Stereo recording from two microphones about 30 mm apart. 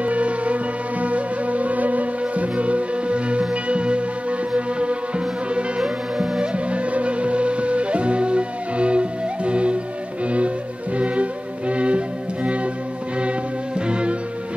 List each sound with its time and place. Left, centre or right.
0.0 s music: right
5.8 s music: centre
6.4 s music: right
13.7 s music: right